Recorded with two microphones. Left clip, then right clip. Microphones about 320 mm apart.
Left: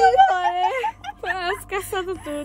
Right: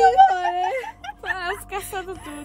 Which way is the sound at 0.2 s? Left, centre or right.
Left.